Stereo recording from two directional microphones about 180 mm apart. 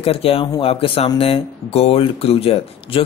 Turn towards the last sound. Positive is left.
turn(degrees=30)  # may be behind; listen again after turning